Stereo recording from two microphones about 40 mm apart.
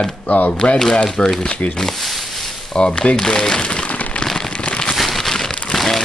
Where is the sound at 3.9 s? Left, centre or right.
Left.